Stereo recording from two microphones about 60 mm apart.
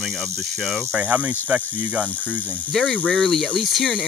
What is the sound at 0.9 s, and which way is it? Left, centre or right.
Speech, right.